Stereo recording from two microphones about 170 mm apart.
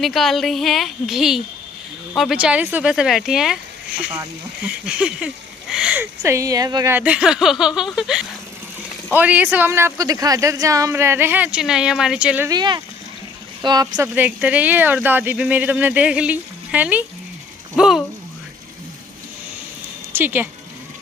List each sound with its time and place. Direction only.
0.0 s speech: centre (ahead or behind)
4.6 s speech: 5° right (ahead or behind)
12.4 s speech: 25° right (ahead or behind)
14.0 s speech: 10° right (ahead or behind)
20.1 s speech: 10° right (ahead or behind)